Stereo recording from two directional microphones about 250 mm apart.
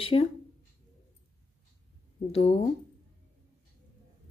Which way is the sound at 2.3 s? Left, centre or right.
Left.